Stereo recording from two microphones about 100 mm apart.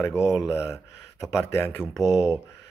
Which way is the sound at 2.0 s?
5° right (ahead or behind).